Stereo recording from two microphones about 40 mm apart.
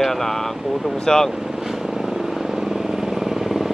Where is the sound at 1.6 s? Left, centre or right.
Centre.